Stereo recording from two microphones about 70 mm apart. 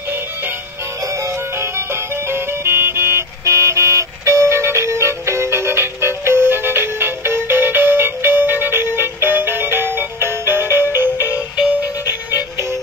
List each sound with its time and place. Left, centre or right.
1.0 s music: right
10.7 s music: left